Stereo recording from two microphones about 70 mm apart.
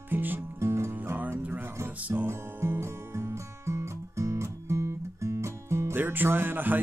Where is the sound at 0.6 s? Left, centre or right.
Right.